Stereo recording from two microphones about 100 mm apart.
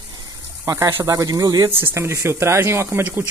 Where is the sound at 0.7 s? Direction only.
35° right (ahead or behind).